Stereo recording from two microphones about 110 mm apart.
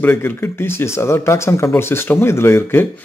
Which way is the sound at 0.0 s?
20° left (ahead or behind).